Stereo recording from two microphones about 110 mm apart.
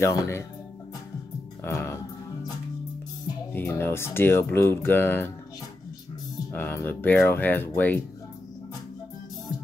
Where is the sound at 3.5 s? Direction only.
20° left (ahead or behind).